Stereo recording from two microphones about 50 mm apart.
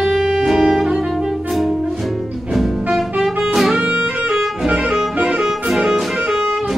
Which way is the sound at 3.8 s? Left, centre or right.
Right.